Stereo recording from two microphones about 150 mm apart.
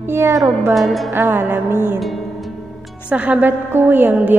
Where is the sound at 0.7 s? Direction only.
Centre (ahead or behind).